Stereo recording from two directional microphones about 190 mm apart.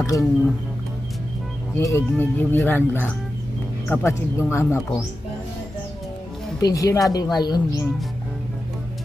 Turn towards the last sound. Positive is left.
turn(degrees=20)  # may be behind; listen again after turning